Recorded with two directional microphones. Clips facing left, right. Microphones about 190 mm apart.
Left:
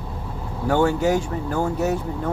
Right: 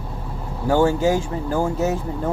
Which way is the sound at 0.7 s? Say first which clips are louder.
Right 2 dB; 35° right (ahead or behind).